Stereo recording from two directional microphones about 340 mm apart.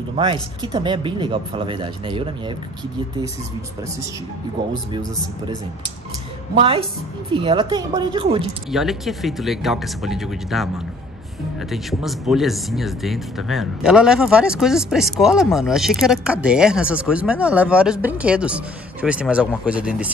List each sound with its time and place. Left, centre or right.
0.1 s speech: centre
6.5 s speech: centre
8.7 s speech: centre
11.7 s speech: centre